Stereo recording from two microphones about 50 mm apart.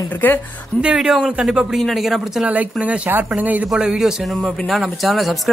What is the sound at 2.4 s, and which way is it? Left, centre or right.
A man's voice, right.